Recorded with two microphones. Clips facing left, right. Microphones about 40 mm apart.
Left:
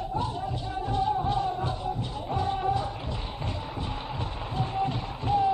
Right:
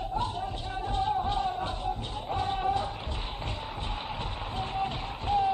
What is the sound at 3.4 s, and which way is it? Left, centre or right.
Music, right.